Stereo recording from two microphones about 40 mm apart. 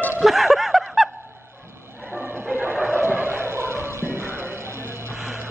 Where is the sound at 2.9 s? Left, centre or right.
Right.